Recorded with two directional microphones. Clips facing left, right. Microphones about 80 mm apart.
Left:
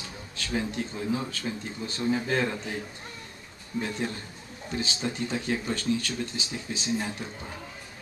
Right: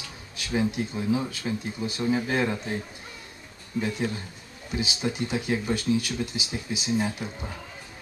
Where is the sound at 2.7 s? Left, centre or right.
Right.